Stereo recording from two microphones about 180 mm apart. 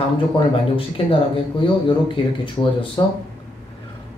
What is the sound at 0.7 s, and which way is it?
Speech, 30° left (ahead or behind).